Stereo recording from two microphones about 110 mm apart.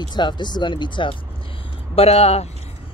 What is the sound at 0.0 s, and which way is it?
Speech, 40° left (ahead or behind).